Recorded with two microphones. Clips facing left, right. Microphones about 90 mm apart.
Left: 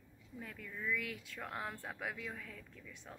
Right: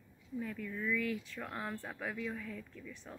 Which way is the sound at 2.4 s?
30° right (ahead or behind).